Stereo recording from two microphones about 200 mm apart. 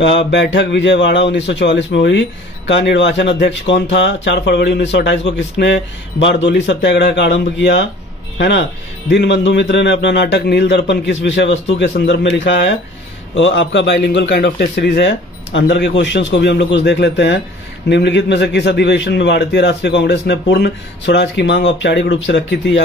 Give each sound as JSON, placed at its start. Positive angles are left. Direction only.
{"t": 0.0, "sound": "a man's voice", "side_deg": 65}